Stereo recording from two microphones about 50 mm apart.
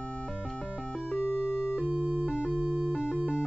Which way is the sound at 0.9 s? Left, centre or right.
Centre.